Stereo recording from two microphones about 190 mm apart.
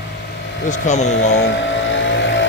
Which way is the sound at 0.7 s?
40° left (ahead or behind).